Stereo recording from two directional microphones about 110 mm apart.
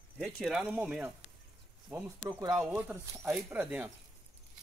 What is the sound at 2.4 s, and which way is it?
Speech, 30° right (ahead or behind).